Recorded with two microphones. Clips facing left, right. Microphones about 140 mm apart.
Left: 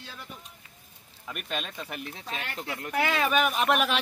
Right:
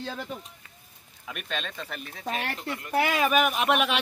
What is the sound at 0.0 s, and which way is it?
Speech, 50° right (ahead or behind).